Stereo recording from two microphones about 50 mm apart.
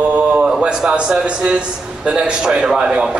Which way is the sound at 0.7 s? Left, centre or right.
Centre.